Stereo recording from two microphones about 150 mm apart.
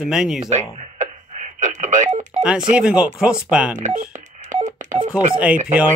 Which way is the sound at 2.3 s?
5° right (ahead or behind).